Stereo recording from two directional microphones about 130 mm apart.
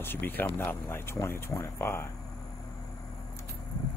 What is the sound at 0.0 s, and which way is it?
Speech, 15° left (ahead or behind).